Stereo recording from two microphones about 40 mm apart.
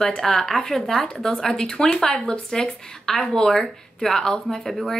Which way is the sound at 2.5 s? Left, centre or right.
Centre.